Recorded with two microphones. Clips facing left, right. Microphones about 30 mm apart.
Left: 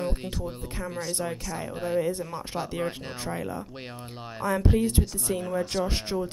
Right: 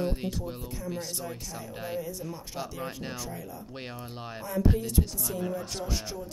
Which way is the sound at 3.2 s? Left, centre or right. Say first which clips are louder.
Left 7 dB; left.